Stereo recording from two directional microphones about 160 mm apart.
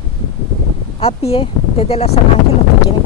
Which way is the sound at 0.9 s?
40° left (ahead or behind).